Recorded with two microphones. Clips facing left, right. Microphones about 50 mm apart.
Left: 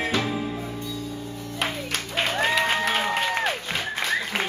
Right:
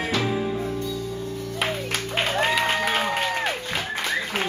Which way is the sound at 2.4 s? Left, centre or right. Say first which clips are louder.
Even; centre.